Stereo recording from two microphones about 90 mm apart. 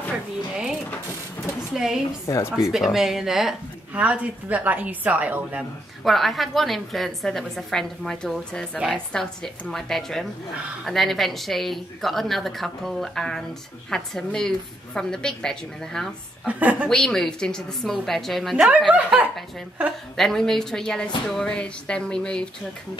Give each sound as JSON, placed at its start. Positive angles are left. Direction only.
{"t": 1.7, "sound": "speech", "side_deg": -5}
{"t": 2.2, "sound": "speech", "side_deg": 35}
{"t": 2.5, "sound": "speech", "side_deg": 0}
{"t": 3.9, "sound": "a woman's voice", "side_deg": -15}
{"t": 6.0, "sound": "speech", "side_deg": 0}
{"t": 16.4, "sound": "a woman's voice", "side_deg": -15}
{"t": 16.9, "sound": "speech", "side_deg": 5}
{"t": 18.9, "sound": "a woman's voice", "side_deg": -10}
{"t": 20.2, "sound": "speech", "side_deg": 5}